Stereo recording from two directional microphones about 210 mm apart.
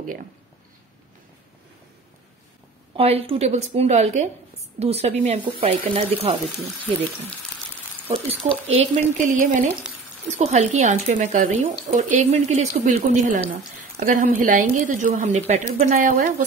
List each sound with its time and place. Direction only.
3.0 s speech: 30° right (ahead or behind)
8.1 s speech: 30° right (ahead or behind)